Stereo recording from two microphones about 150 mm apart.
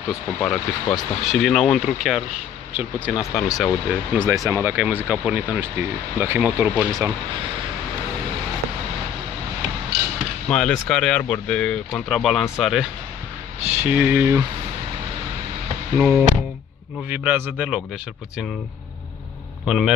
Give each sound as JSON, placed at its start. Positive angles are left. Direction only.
{"t": 0.4, "sound": "speech", "side_deg": 5}
{"t": 4.3, "sound": "speech", "side_deg": -15}
{"t": 9.9, "sound": "a sound", "side_deg": -90}
{"t": 10.5, "sound": "speech", "side_deg": 5}
{"t": 13.8, "sound": "speech", "side_deg": -10}
{"t": 16.0, "sound": "speech", "side_deg": -5}
{"t": 19.6, "sound": "speech", "side_deg": 0}